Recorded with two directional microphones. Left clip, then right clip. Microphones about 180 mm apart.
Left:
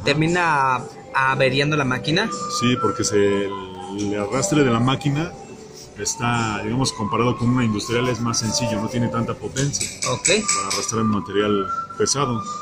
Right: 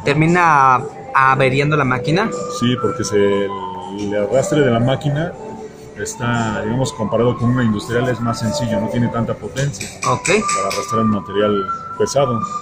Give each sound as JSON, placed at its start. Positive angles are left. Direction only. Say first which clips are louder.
{"t": 0.0, "sound": "a man's voice", "louder": "right 5 dB", "side_deg": -5}
{"t": 2.6, "sound": "speech", "louder": "right 1 dB", "side_deg": 35}
{"t": 10.0, "sound": "speech", "louder": "right 5 dB", "side_deg": -10}
{"t": 10.9, "sound": "speech", "louder": "right 5 dB", "side_deg": 40}